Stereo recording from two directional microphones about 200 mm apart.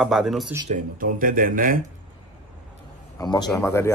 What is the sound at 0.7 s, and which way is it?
Speech, 45° right (ahead or behind).